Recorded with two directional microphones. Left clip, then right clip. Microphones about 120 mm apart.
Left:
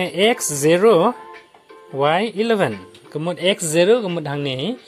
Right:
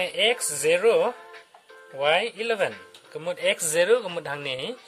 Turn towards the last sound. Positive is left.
turn(degrees=0)  # may be behind; listen again after turning